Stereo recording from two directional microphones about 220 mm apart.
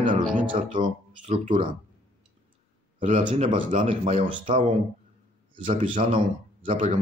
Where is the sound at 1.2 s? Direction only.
35° right (ahead or behind).